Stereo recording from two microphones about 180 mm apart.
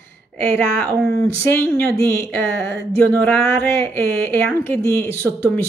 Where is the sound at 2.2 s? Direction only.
10° left (ahead or behind).